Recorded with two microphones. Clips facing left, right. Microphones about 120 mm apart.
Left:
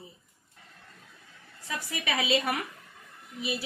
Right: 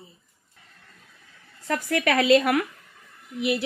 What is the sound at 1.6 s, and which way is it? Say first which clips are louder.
A woman's voice: right 10 dB; 55° right (ahead or behind).